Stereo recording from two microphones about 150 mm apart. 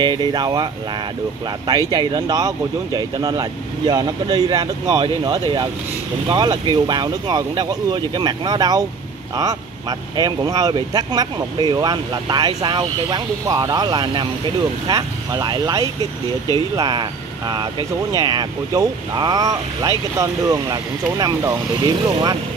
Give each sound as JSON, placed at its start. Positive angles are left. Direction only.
{"t": 0.0, "sound": "speech", "side_deg": -30}
{"t": 1.9, "sound": "speech", "side_deg": -30}